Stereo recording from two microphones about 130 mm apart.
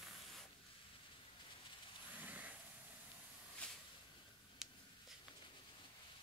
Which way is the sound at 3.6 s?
10° left (ahead or behind).